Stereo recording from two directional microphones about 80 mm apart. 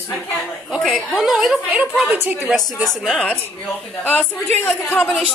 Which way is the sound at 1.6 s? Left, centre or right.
Centre.